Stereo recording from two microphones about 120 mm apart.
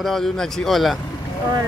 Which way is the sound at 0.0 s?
5° left (ahead or behind).